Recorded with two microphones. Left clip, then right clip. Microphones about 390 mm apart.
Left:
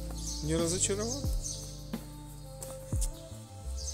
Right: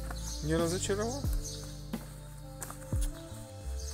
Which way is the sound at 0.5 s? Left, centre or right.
Centre.